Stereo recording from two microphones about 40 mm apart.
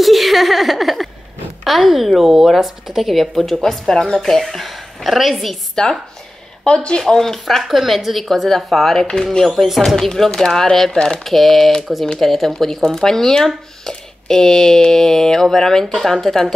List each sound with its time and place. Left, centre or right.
0.0 s a woman's voice: centre
4.4 s a woman's voice: centre
6.6 s speech: left
7.6 s a woman's voice: centre
10.9 s speech: left
11.2 s a woman's voice: centre